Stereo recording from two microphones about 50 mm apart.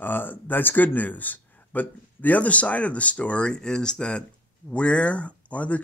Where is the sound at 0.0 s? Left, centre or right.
Left.